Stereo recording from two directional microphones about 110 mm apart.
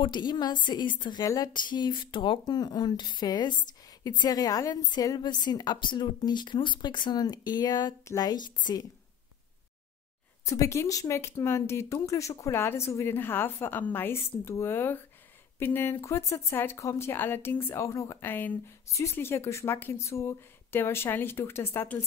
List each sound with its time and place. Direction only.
0.0 s a woman's voice: 40° left (ahead or behind)
1.2 s a woman's voice: 35° left (ahead or behind)
10.4 s speech: 30° left (ahead or behind)